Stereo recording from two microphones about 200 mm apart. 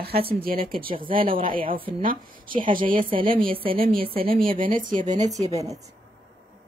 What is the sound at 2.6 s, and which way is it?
Speech, 40° right (ahead or behind).